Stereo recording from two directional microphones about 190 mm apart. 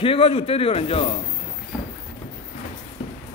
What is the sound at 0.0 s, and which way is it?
A man's voice, 30° left (ahead or behind).